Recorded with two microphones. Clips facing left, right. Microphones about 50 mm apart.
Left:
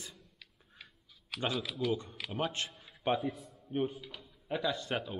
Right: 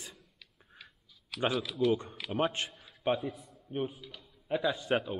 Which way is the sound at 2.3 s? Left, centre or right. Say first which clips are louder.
Right 5 dB; right.